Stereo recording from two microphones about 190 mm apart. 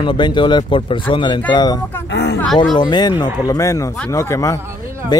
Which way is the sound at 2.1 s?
60° left (ahead or behind).